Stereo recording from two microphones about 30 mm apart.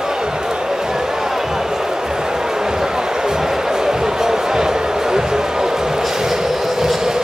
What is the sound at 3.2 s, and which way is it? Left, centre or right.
Music, centre.